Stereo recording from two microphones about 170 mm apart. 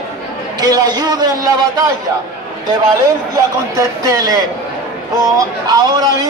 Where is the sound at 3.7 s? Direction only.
20° right (ahead or behind).